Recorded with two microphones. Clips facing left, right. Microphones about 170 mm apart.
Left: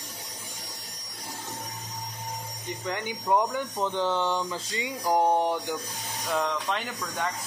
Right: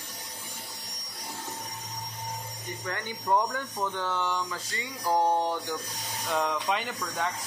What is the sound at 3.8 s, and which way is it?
Speech, 25° left (ahead or behind).